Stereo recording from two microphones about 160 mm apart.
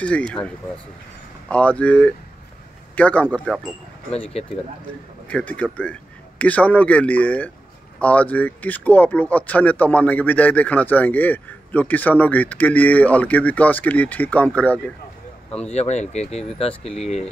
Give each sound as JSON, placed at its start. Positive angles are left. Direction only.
{"t": 0.0, "sound": "speech", "side_deg": 5}
{"t": 1.5, "sound": "speech", "side_deg": 10}
{"t": 4.1, "sound": "speech", "side_deg": 40}
{"t": 5.3, "sound": "speech", "side_deg": 10}
{"t": 15.7, "sound": "speech", "side_deg": 45}